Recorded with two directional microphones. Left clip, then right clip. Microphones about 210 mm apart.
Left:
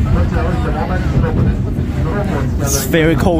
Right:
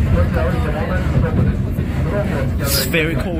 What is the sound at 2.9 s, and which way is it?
Speech, 20° left (ahead or behind).